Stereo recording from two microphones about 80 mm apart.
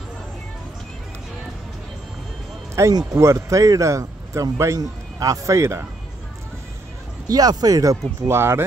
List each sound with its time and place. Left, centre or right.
2.8 s speech: right
7.2 s speech: right
8.4 s speech: right